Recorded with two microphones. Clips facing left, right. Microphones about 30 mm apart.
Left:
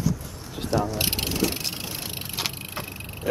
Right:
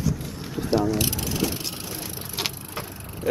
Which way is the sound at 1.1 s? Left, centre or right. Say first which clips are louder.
Left 1 dB; left.